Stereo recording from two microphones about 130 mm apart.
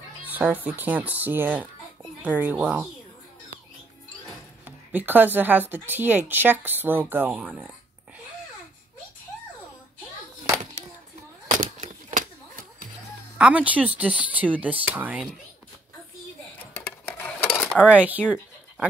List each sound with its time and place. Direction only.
0.2 s speech: 10° right (ahead or behind)
4.6 s speech: 15° right (ahead or behind)
11.7 s a sound: 90° right
13.4 s speech: 10° right (ahead or behind)
17.2 s cutlery: 15° left (ahead or behind)
17.7 s speech: 10° right (ahead or behind)